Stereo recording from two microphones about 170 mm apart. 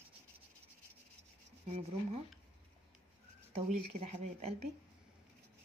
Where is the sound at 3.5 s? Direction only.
40° right (ahead or behind).